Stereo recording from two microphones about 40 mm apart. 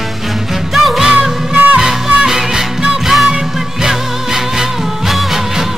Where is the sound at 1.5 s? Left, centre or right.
Right.